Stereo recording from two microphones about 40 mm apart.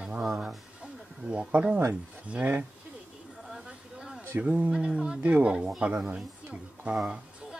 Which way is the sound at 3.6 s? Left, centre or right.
Right.